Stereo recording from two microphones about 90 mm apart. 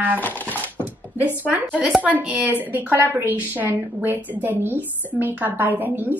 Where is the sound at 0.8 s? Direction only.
20° right (ahead or behind).